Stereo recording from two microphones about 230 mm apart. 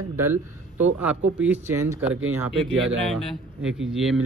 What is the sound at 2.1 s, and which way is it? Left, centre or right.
Speech, right.